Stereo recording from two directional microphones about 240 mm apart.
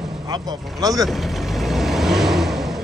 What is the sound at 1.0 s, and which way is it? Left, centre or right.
Vehicle, centre.